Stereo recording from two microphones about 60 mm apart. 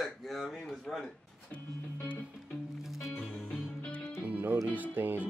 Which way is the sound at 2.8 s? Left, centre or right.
Centre.